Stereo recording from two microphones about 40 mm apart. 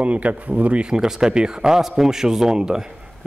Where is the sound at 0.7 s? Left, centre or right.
Centre.